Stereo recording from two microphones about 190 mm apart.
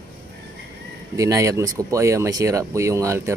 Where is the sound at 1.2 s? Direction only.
15° right (ahead or behind).